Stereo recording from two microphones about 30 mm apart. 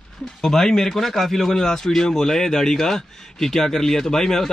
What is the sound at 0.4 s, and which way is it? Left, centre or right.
Speech, centre.